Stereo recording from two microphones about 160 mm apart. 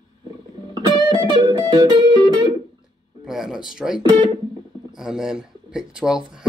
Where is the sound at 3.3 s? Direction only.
5° right (ahead or behind).